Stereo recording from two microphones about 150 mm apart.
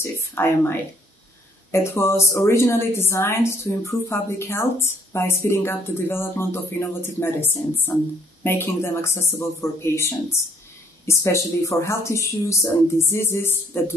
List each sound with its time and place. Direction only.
0.0 s a woman's voice: 15° left (ahead or behind)